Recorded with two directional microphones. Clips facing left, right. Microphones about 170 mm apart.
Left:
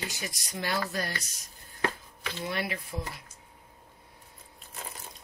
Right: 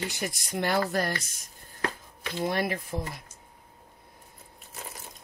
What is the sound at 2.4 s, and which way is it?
Speech, 45° right (ahead or behind).